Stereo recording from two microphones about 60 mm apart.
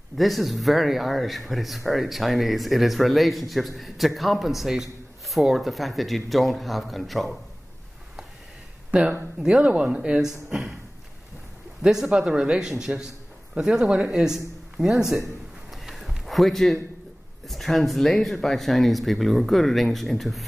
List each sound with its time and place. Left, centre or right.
0.2 s speech: centre
9.6 s speech: right
11.8 s speech: centre
15.7 s a sound: centre
17.5 s speech: centre